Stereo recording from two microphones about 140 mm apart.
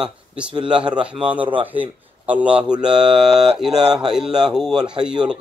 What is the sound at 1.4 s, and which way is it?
Speech, 35° right (ahead or behind).